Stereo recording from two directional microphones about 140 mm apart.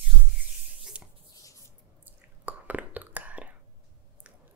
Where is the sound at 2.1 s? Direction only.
10° right (ahead or behind).